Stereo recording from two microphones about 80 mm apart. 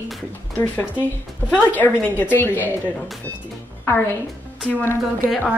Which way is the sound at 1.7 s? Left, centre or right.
Left.